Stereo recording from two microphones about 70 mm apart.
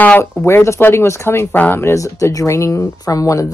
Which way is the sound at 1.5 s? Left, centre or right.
Left.